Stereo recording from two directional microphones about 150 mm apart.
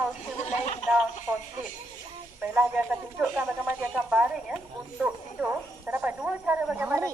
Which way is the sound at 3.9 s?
5° right (ahead or behind).